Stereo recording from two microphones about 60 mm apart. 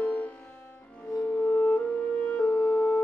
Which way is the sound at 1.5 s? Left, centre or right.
Left.